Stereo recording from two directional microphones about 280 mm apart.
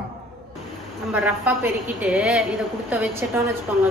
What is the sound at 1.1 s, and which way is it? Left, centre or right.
A woman's voice, centre.